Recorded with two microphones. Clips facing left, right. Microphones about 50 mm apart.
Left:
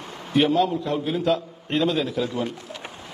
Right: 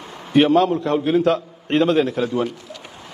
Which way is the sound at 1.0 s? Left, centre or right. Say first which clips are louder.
Right 6 dB; right.